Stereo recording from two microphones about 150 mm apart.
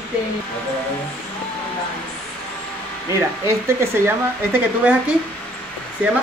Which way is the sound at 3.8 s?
15° right (ahead or behind).